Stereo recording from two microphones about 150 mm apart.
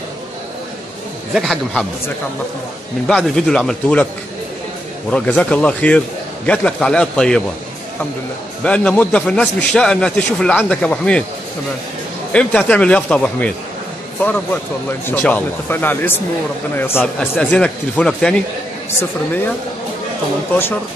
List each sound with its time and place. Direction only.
1.3 s speech: centre (ahead or behind)
3.1 s speech: 5° left (ahead or behind)
5.1 s a man's voice: 10° left (ahead or behind)
8.6 s a man's voice: 10° left (ahead or behind)
12.3 s a man's voice: 5° left (ahead or behind)
17.0 s speech: 5° left (ahead or behind)